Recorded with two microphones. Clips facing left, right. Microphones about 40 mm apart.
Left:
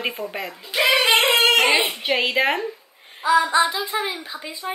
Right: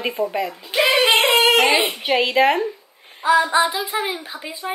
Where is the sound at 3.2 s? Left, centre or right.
Right.